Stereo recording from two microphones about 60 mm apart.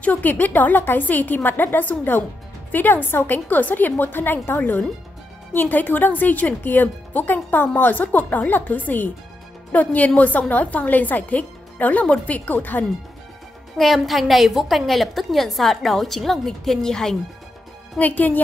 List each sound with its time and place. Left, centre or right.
0.0 s a woman's voice: left
13.7 s a woman's voice: centre
17.9 s speech: left